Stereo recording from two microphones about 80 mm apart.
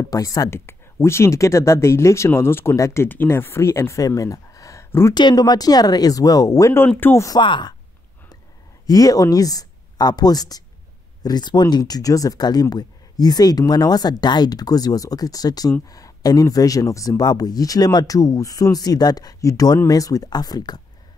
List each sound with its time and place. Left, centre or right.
0.0 s speech: left
0.5 s speech: left
5.1 s speech: left
7.0 s speech: left
7.3 s speech: left
8.8 s speech: left
17.2 s speech: left